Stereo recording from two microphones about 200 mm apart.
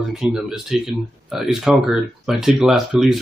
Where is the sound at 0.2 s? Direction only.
Centre (ahead or behind).